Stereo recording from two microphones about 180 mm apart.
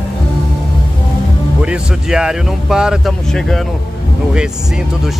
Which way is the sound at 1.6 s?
5° right (ahead or behind).